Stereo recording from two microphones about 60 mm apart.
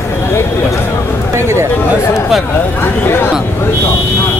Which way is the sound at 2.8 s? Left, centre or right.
Left.